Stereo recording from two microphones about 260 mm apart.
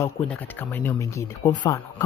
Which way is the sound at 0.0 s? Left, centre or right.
Centre.